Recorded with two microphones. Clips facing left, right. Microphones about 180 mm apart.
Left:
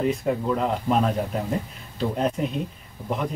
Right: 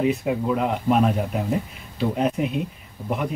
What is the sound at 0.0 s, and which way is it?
Speech, 5° right (ahead or behind).